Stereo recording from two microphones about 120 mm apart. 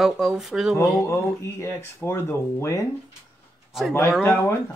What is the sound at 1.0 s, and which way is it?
Speech, 25° left (ahead or behind).